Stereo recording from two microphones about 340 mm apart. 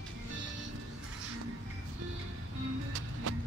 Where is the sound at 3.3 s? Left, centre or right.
Right.